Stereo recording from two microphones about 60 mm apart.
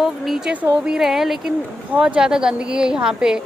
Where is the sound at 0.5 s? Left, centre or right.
Right.